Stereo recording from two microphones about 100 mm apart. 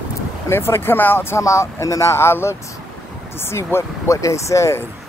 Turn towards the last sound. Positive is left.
turn(degrees=30)  # may be behind; listen again after turning